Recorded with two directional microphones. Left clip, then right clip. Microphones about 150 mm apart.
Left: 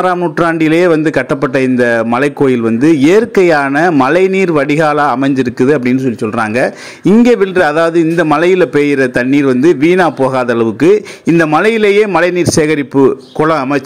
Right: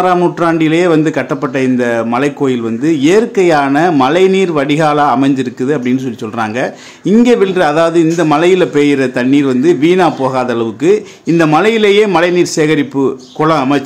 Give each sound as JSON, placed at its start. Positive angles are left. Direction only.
{"t": 0.4, "sound": "a man's voice", "side_deg": 35}